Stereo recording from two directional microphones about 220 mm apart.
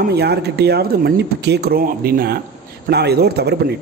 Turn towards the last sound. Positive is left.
turn(degrees=-50)  # may be behind; listen again after turning